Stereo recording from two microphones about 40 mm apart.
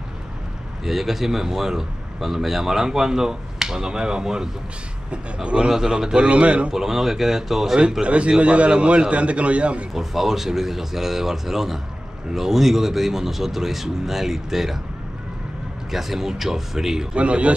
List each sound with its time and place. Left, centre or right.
0.8 s a man's voice: centre
5.1 s speech: right
5.7 s a man's voice: centre
6.2 s a man's voice: right
6.7 s a man's voice: centre
8.0 s a man's voice: right
9.9 s a man's voice: centre
15.9 s a man's voice: centre
17.1 s a man's voice: right